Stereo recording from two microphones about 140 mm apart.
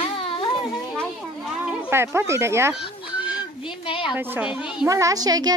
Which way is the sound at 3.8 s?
40° left (ahead or behind).